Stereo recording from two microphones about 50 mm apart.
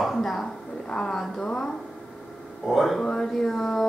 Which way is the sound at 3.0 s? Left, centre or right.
Centre.